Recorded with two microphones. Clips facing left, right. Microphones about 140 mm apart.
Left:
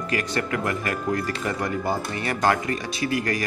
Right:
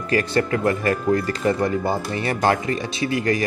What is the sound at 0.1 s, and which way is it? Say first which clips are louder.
Speech: right 7 dB; 30° right (ahead or behind).